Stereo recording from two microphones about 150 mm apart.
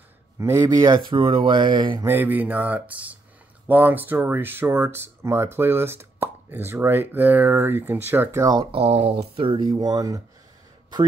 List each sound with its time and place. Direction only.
0.4 s speech: 20° right (ahead or behind)
2.0 s speech: 15° right (ahead or behind)
8.7 s speech: 40° right (ahead or behind); by 10.2 s 25° right (ahead or behind)